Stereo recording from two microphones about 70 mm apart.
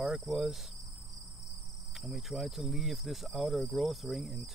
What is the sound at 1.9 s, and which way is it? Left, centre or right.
Cricket, centre.